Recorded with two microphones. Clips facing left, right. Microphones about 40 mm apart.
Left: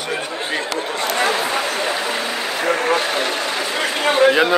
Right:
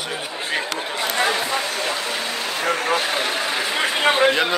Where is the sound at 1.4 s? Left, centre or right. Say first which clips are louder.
Left 3 dB; left.